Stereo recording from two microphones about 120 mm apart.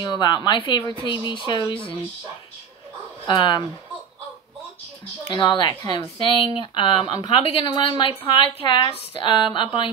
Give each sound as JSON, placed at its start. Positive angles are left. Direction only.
{"t": 0.0, "sound": "speech", "side_deg": 35}
{"t": 3.3, "sound": "speech", "side_deg": 40}
{"t": 5.2, "sound": "speech", "side_deg": 45}